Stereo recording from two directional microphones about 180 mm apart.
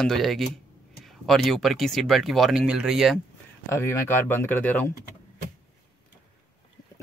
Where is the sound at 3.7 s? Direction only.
15° left (ahead or behind).